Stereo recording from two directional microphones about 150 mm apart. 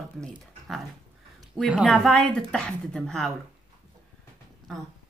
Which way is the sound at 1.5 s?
5° right (ahead or behind).